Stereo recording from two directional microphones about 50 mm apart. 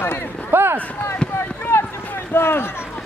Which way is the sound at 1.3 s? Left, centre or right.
Left.